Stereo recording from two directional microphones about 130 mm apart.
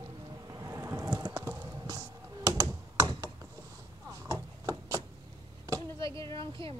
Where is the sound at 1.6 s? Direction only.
30° right (ahead or behind).